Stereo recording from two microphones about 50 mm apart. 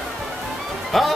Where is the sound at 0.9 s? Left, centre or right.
Centre.